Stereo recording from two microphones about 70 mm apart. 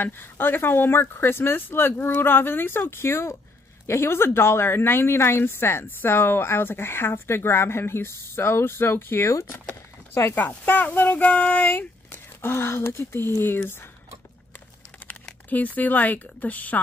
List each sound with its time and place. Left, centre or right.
0.0 s a woman's voice: left
10.3 s speech: left
12.1 s speech: left
15.5 s speech: left